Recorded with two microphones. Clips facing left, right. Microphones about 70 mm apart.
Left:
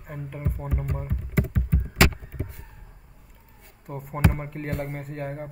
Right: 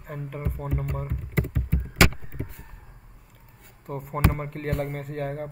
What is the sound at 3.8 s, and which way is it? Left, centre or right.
Speech, centre.